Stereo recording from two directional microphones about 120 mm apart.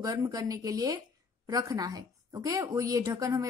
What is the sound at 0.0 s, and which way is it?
Speech, 30° right (ahead or behind).